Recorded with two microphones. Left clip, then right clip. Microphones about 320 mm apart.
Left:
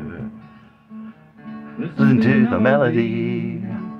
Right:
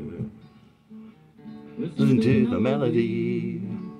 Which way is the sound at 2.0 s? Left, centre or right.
Centre.